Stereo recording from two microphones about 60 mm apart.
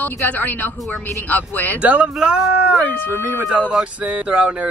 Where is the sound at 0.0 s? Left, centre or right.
Left.